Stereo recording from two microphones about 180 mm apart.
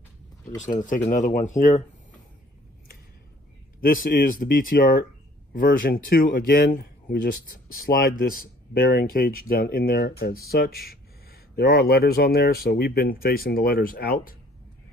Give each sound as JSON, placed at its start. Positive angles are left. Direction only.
{"t": 0.8, "sound": "speech", "side_deg": 45}
{"t": 3.8, "sound": "a man's voice", "side_deg": 55}